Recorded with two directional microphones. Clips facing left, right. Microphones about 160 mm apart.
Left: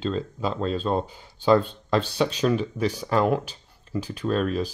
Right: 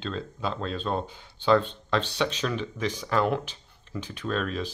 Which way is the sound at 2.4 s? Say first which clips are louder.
Left 7 dB; 40° left (ahead or behind).